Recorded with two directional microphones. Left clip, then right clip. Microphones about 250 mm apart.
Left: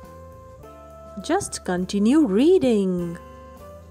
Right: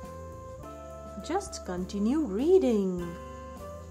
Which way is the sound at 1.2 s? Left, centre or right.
Left.